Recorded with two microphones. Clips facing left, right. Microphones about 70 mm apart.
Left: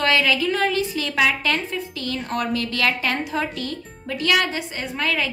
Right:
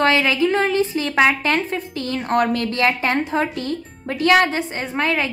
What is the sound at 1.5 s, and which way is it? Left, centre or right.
A woman's voice, right.